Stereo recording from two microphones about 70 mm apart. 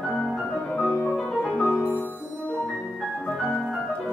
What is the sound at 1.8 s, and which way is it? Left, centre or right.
Music, left.